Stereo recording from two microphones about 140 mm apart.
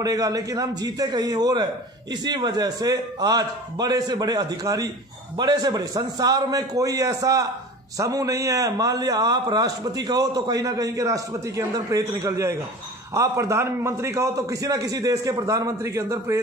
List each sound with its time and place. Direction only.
0.0 s a man's voice: 25° right (ahead or behind)